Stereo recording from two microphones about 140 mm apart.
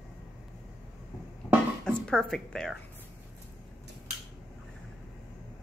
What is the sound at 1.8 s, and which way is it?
Speech, 5° left (ahead or behind).